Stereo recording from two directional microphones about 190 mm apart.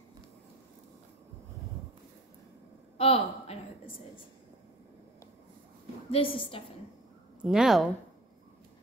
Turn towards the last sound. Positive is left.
turn(degrees=0)  # may be behind; listen again after turning